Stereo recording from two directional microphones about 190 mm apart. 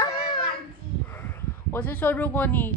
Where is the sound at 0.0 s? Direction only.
25° left (ahead or behind).